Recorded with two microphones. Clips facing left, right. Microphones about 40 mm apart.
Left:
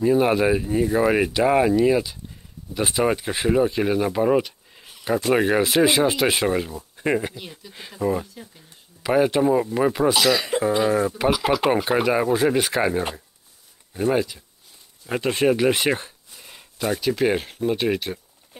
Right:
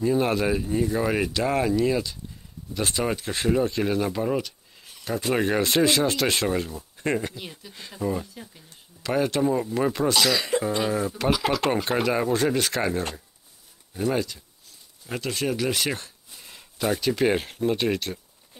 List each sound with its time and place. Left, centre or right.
0.0 s speech: centre
7.3 s speech: centre
8.0 s speech: centre
15.0 s speech: left
16.3 s speech: centre